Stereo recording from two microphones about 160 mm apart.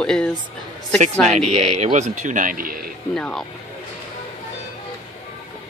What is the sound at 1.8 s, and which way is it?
Speech, 45° right (ahead or behind).